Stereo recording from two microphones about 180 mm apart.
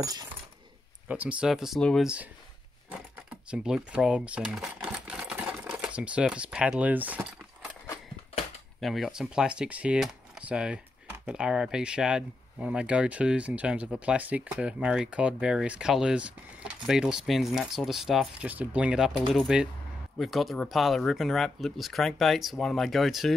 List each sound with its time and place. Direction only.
0.0 s coin: 20° right (ahead or behind)
1.0 s speech: 10° right (ahead or behind)
8.8 s speech: centre (ahead or behind)